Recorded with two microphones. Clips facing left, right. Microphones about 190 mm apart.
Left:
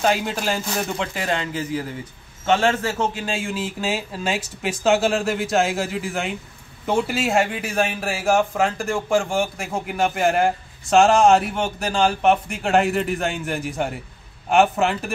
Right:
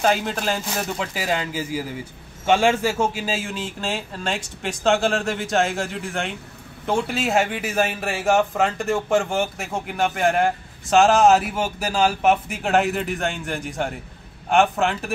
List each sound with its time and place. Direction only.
0.0 s a man's voice: centre (ahead or behind)